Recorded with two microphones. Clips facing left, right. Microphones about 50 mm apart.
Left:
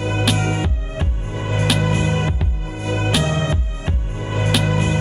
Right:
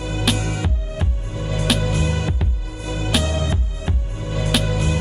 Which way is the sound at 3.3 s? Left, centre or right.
Left.